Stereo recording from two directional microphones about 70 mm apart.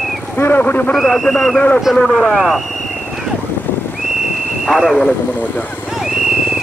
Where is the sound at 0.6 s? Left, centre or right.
Left.